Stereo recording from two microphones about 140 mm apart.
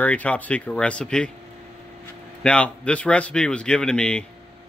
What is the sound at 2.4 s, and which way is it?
Speech, 10° left (ahead or behind).